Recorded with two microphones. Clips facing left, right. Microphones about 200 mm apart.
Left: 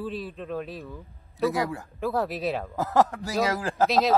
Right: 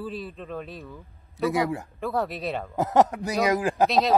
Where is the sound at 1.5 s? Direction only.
20° right (ahead or behind).